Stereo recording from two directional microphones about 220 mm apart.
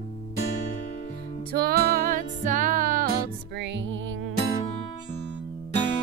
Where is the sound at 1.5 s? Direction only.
45° right (ahead or behind).